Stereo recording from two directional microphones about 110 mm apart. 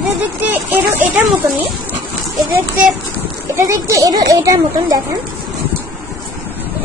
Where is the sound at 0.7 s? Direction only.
15° right (ahead or behind).